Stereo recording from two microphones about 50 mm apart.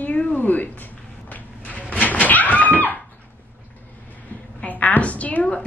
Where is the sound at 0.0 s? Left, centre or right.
Left.